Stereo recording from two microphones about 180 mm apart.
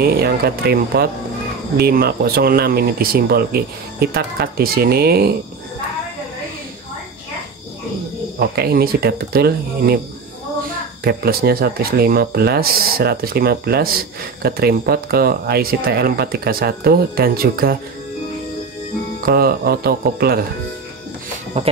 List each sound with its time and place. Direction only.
0.0 s speech: 60° right (ahead or behind)
8.4 s speech: 60° right (ahead or behind)
11.1 s speech: 60° right (ahead or behind)
19.2 s speech: 55° right (ahead or behind)
21.5 s speech: 35° right (ahead or behind)